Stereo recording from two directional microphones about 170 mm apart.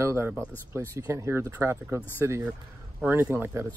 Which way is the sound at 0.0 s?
15° right (ahead or behind).